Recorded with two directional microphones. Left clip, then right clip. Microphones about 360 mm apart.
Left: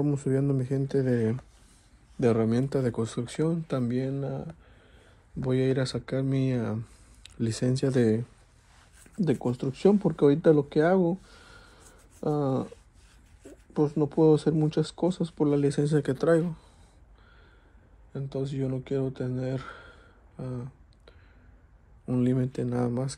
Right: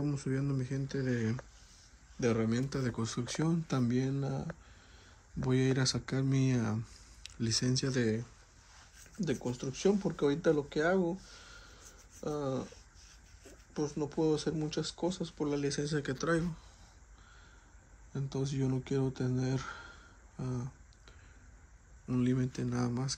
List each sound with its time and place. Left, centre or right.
0.0 s speech: centre
11.2 s a sound: centre
14.2 s speech: centre
18.1 s speech: centre